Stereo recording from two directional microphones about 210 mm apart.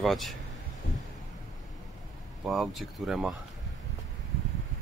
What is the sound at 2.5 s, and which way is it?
Speech, centre (ahead or behind).